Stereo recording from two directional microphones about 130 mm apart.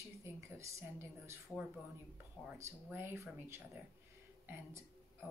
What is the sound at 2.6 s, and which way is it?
A woman's voice, 20° right (ahead or behind).